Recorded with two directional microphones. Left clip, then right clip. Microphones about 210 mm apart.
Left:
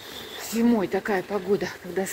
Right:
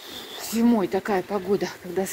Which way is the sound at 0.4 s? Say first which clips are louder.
Right 1 dB; 25° right (ahead or behind).